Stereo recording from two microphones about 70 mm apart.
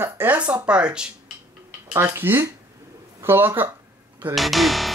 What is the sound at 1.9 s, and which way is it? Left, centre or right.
Speech, right.